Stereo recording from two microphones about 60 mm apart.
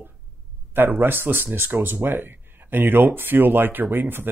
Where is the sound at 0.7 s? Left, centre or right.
Right.